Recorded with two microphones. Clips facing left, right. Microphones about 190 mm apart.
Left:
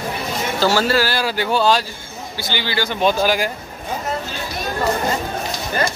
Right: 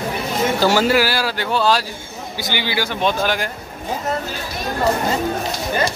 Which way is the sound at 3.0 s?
5° left (ahead or behind).